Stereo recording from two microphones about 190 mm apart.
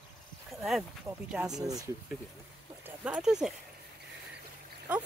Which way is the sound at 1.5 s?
20° right (ahead or behind).